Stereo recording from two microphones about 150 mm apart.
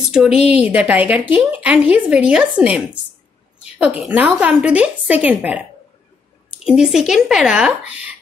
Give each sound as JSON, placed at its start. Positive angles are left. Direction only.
{"t": 0.5, "sound": "a woman's voice", "side_deg": -10}
{"t": 6.6, "sound": "a woman's voice", "side_deg": -5}